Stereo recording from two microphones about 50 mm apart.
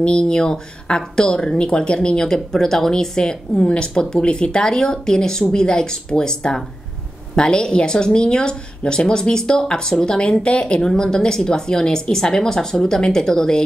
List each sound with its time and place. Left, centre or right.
0.0 s a woman's voice: centre